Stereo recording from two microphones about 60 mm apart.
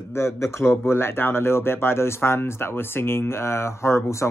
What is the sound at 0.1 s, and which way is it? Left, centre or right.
Speech, left.